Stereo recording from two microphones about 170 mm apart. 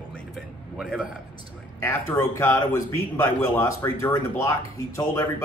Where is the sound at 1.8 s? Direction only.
15° left (ahead or behind).